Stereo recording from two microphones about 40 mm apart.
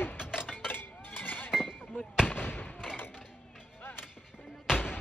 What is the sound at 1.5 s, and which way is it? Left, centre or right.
Chink, centre.